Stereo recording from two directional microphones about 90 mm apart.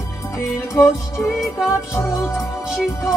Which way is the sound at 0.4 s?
35° left (ahead or behind).